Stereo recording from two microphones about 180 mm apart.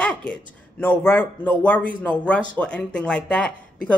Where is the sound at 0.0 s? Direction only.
5° left (ahead or behind).